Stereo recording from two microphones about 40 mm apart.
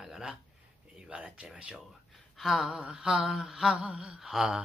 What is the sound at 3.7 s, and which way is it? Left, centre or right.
Speech, right.